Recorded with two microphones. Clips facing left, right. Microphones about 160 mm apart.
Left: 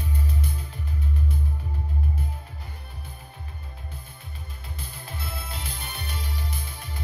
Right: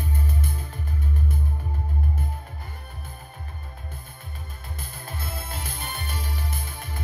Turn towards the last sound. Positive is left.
turn(degrees=-50)  # may be behind; listen again after turning